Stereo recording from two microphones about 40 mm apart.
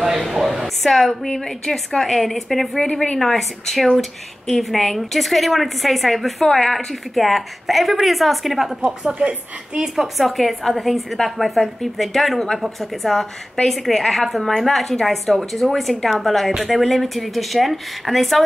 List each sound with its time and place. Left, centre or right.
0.8 s a woman's voice: centre
8.8 s speech: right
9.8 s a woman's voice: centre